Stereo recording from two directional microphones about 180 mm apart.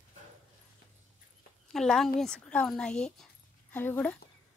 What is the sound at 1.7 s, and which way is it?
Speech, centre (ahead or behind).